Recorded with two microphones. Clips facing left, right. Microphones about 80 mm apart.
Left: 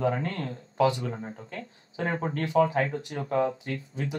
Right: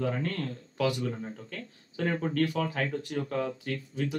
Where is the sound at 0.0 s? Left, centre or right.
Left.